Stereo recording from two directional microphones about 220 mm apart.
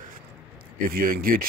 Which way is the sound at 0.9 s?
40° right (ahead or behind).